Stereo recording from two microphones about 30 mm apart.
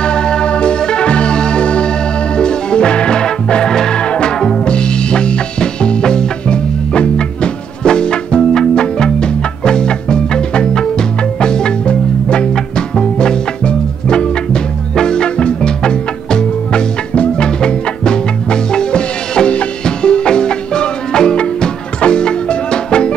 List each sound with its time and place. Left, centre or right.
0.0 s music: left
11.8 s music: left
12.5 s music: left